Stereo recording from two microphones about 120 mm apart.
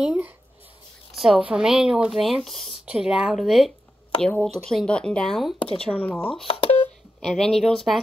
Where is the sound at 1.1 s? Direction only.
Centre (ahead or behind).